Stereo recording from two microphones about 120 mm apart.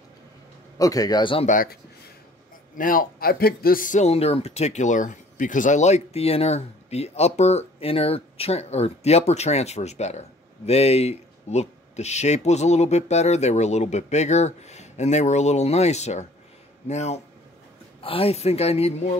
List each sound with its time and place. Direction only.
0.7 s a man's voice: 30° left (ahead or behind)
1.5 s speech: 90° left
3.8 s speech: 80° left
18.0 s speech: 50° left (ahead or behind)